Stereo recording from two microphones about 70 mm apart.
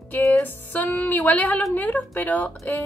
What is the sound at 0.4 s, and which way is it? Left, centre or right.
Speech, left.